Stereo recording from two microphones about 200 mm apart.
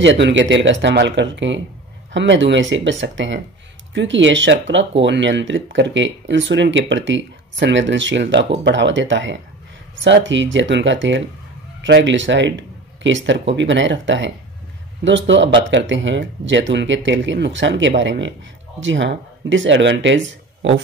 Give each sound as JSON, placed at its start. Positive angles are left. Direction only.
{"t": 0.0, "sound": "speech", "side_deg": -65}